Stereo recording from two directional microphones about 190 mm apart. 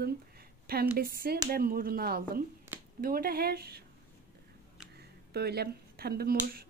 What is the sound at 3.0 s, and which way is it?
Speech, 50° right (ahead or behind).